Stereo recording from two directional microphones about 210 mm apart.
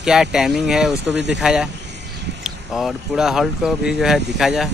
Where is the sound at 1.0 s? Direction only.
55° right (ahead or behind).